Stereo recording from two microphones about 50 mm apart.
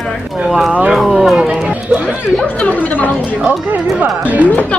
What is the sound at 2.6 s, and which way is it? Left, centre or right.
Speech, left.